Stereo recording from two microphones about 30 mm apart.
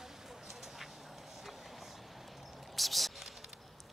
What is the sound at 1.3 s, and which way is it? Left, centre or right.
Vehicle, centre.